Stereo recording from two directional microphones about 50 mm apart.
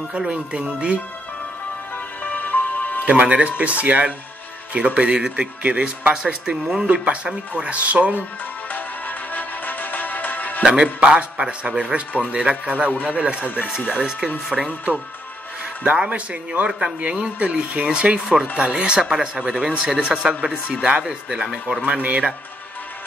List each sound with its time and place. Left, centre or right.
0.2 s speech: centre
2.2 s music: left
3.1 s speech: right
6.2 s speech: centre
8.7 s music: left
10.7 s speech: right
14.5 s speech: centre
16.1 s speech: right